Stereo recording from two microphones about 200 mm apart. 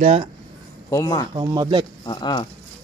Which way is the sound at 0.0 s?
30° right (ahead or behind).